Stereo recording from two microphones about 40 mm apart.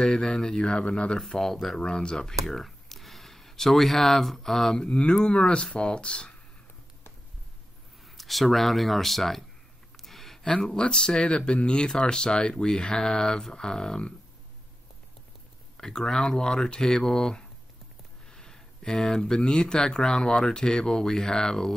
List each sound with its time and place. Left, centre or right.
0.0 s speech: centre
1.3 s speech: centre
1.8 s speech: left
2.4 s speech: centre
4.8 s speech: left
8.2 s speech: centre
9.9 s a sound: centre
10.4 s speech: centre
15.8 s speech: centre